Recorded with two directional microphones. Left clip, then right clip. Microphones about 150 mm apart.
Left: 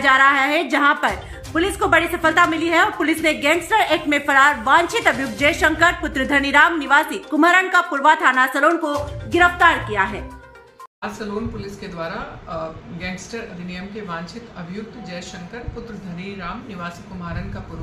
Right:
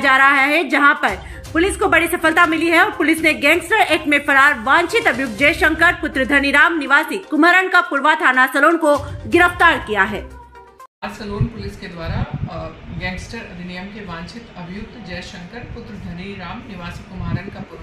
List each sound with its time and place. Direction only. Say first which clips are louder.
0.0 s a woman's voice: right 2 dB; 20° right (ahead or behind)
8.8 s speech: right 7 dB; 60° right (ahead or behind)
9.8 s speech: right 3 dB; 35° right (ahead or behind)